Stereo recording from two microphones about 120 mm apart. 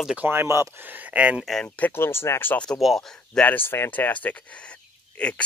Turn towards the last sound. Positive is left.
turn(degrees=10)  # may be behind; listen again after turning